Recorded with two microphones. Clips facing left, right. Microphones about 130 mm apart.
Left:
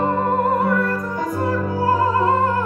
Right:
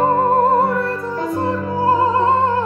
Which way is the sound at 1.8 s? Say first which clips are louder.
Right 3 dB; 25° right (ahead or behind).